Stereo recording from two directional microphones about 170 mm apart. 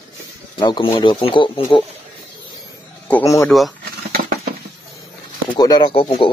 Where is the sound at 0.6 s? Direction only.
30° left (ahead or behind).